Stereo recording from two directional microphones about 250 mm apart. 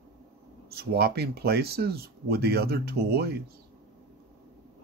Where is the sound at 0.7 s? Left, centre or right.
Right.